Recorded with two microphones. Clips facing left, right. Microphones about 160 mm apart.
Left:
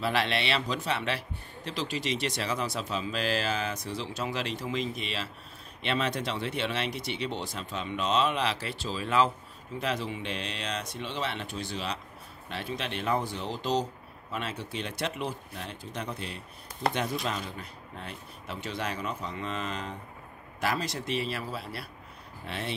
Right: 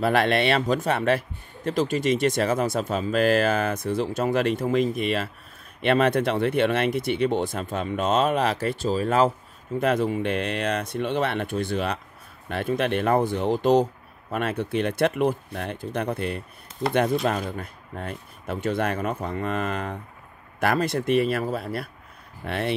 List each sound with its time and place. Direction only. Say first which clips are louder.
0.0 s a man's voice: right 8 dB; 50° right (ahead or behind)